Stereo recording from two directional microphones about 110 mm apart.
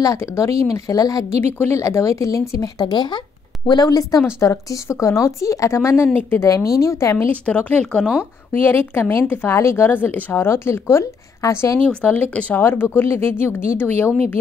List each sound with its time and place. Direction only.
0.0 s speech: 25° left (ahead or behind)
7.4 s speech: 10° left (ahead or behind)
8.5 s speech: 20° left (ahead or behind)
11.9 s speech: 15° left (ahead or behind)